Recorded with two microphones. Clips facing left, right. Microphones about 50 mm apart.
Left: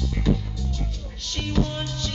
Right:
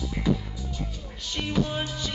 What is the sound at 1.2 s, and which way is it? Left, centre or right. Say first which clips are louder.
Music: left 1 dB; centre.